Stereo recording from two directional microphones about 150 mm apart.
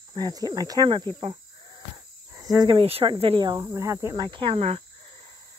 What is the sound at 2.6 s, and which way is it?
Speech, 40° right (ahead or behind).